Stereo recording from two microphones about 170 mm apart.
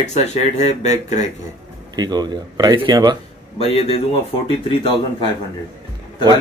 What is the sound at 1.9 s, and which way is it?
Speech, 25° right (ahead or behind).